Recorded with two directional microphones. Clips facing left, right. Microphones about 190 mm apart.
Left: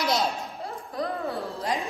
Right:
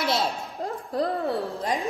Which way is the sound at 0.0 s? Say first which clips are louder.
Even; centre (ahead or behind).